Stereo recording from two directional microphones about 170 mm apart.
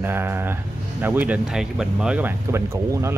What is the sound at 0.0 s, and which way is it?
Speech, 15° right (ahead or behind).